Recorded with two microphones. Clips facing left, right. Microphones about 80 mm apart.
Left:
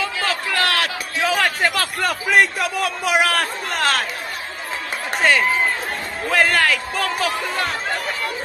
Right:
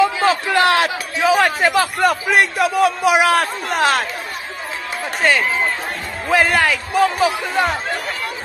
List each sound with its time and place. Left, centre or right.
0.0 s a sound: right
1.2 s a man's voice: centre
5.2 s a man's voice: centre